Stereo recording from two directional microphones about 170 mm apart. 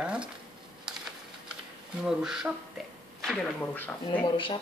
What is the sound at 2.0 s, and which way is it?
Speech, 5° right (ahead or behind).